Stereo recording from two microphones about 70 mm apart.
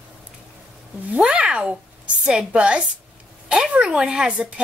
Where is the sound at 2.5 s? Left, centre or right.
Centre.